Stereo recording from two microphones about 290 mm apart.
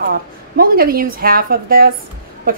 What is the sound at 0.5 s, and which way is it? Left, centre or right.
A woman's voice, right.